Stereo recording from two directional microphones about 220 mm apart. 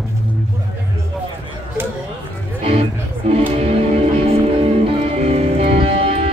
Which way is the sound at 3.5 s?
25° right (ahead or behind).